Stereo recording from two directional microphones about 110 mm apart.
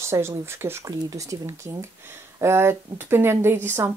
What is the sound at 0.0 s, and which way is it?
Speech, 25° right (ahead or behind).